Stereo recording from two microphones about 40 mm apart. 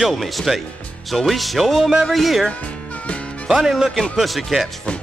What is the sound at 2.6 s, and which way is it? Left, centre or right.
Music, left.